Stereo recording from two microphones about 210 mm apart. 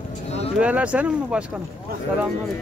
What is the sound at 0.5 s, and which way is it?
Speech, 5° right (ahead or behind).